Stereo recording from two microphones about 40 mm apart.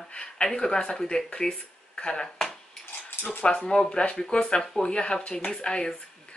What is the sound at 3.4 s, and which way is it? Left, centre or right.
Speech, left.